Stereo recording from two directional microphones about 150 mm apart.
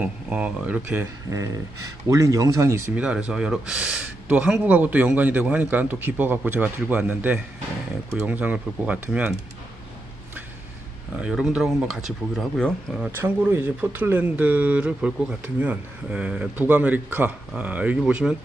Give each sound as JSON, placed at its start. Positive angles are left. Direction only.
{"t": 0.0, "sound": "speech", "side_deg": -10}
{"t": 3.0, "sound": "speech", "side_deg": -5}
{"t": 11.1, "sound": "speech", "side_deg": -5}
{"t": 13.0, "sound": "speech", "side_deg": -15}